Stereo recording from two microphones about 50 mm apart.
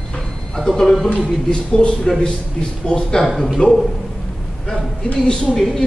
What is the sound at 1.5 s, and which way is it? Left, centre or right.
A man's voice, centre.